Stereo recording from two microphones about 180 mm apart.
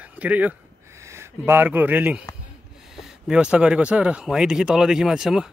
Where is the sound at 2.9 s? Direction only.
Centre (ahead or behind).